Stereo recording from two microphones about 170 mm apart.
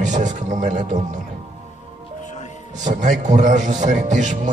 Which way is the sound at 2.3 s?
45° left (ahead or behind).